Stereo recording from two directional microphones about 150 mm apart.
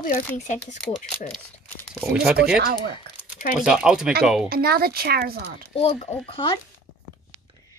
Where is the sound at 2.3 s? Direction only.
90° right.